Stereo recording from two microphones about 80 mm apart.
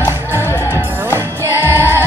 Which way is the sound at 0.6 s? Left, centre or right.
Right.